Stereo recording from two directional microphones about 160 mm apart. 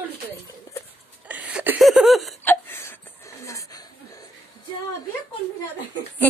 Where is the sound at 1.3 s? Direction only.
10° right (ahead or behind).